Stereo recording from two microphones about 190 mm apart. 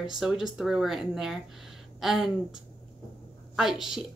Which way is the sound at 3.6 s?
Centre (ahead or behind).